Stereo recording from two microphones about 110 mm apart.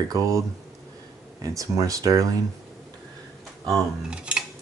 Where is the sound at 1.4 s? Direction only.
30° right (ahead or behind).